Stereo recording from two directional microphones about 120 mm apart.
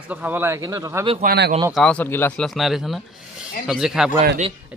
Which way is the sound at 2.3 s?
Centre (ahead or behind).